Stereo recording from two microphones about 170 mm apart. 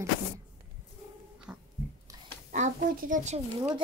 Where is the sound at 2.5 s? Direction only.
50° right (ahead or behind).